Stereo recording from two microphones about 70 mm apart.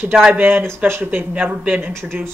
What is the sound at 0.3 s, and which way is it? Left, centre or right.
Speech, right.